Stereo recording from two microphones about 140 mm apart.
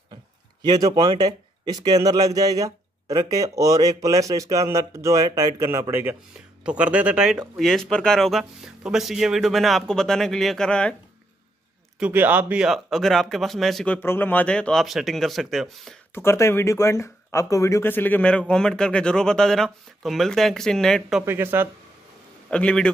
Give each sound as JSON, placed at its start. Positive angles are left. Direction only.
{"t": 0.1, "sound": "a sound", "side_deg": -30}
{"t": 1.1, "sound": "speech", "side_deg": -30}
{"t": 12.0, "sound": "speech", "side_deg": -10}
{"t": 13.9, "sound": "speech", "side_deg": 15}
{"t": 16.2, "sound": "speech", "side_deg": 20}
{"t": 21.2, "sound": "speech", "side_deg": -15}
{"t": 22.5, "sound": "a man's voice", "side_deg": 5}